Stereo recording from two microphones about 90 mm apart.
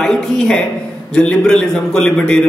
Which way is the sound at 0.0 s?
5° left (ahead or behind).